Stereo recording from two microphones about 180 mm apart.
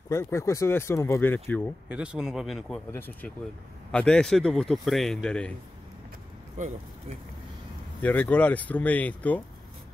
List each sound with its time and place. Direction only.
0.1 s speech: 15° left (ahead or behind)
1.9 s speech: 5° right (ahead or behind)
2.9 s speech: 10° left (ahead or behind)
6.6 s speech: 40° right (ahead or behind)
8.0 s speech: 10° left (ahead or behind)